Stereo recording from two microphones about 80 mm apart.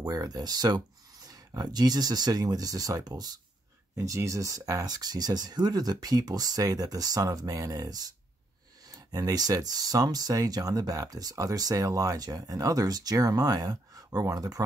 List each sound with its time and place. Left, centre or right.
0.1 s speech: right
3.9 s speech: right
9.1 s speech: right